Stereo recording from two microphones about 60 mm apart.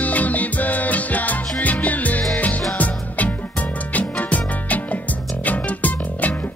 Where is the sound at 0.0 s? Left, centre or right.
Left.